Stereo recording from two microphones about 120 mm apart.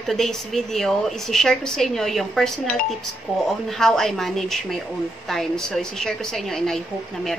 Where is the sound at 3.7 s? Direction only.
5° left (ahead or behind).